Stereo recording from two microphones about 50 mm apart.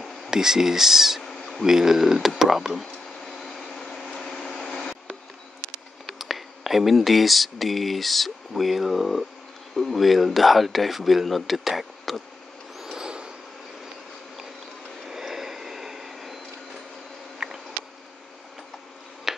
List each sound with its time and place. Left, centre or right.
0.3 s speech: centre
1.2 s a sound: centre
1.6 s speech: centre
2.8 s a sound: centre
6.1 s speech: centre
12.7 s vehicle: centre
13.0 s vehicle: centre
15.0 s vehicle: centre
17.4 s a sound: centre
19.3 s finger snapping: centre